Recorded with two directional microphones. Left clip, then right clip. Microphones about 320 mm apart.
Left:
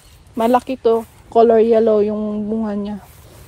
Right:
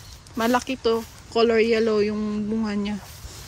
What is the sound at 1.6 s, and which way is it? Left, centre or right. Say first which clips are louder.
Speech: left 7 dB; left.